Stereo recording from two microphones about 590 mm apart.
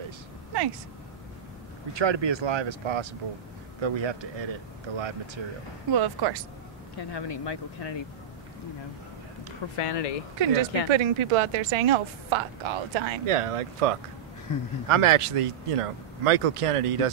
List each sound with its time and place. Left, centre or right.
2.0 s a woman's voice: right
5.9 s speech: right
7.0 s speech: left
9.8 s speech: left
10.4 s a woman's voice: right
14.5 s speech: left
14.9 s speech: right